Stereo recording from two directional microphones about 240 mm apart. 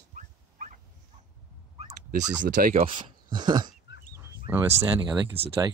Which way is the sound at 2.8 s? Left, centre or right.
Right.